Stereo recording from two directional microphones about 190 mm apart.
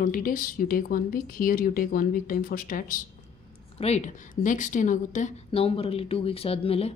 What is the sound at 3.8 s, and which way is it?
Speech, 35° left (ahead or behind).